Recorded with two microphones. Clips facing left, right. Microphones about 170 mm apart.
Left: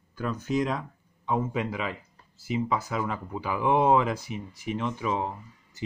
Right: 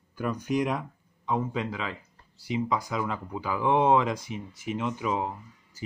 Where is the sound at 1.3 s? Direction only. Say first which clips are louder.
Left 1 dB; 5° left (ahead or behind).